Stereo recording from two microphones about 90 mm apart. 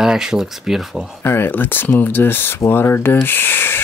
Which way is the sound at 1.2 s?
25° left (ahead or behind).